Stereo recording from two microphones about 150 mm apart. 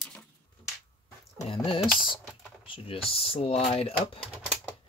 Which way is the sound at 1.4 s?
40° left (ahead or behind).